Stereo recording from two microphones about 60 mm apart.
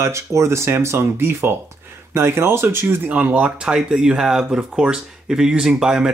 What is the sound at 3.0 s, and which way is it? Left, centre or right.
Speech, right.